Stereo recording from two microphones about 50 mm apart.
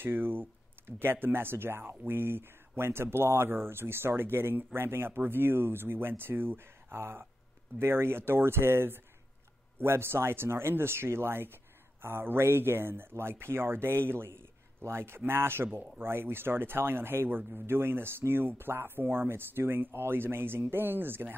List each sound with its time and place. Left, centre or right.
0.0 s speech: right